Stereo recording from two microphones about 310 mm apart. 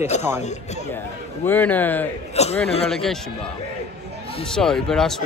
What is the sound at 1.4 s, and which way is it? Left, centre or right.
Speech, centre.